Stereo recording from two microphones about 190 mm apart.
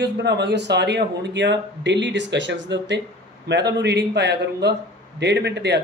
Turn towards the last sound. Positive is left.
turn(degrees=-65)  # may be behind; listen again after turning